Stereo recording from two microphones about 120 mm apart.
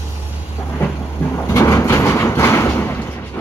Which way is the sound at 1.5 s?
25° left (ahead or behind).